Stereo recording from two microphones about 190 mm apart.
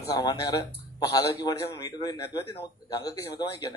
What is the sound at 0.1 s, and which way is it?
A man's voice, 20° left (ahead or behind).